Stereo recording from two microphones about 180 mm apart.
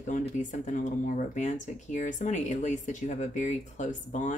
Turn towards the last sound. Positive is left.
turn(degrees=45)  # may be behind; listen again after turning